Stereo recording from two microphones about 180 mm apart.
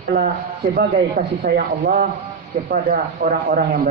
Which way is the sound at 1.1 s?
55° right (ahead or behind).